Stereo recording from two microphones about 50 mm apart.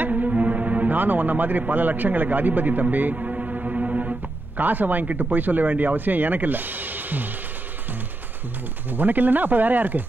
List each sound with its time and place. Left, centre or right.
0.0 s music: right
4.6 s speech: right
8.9 s speech: right